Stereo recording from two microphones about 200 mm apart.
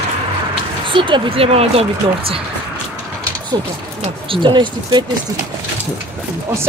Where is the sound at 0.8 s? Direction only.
25° right (ahead or behind).